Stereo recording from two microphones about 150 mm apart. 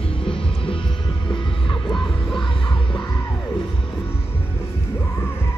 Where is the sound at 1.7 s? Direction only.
5° left (ahead or behind).